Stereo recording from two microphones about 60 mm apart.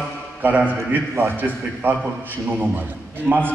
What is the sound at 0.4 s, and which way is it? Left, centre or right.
A man's voice, right.